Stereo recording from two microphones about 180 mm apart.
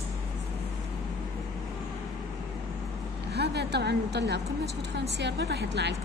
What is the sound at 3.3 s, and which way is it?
A woman's voice, 65° right (ahead or behind).